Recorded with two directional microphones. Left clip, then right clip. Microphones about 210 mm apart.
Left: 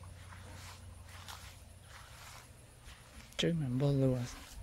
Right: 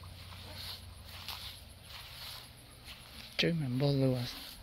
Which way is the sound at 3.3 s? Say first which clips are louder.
Right 2 dB; 15° left (ahead or behind).